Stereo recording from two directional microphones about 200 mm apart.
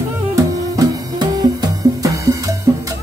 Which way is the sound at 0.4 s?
15° right (ahead or behind).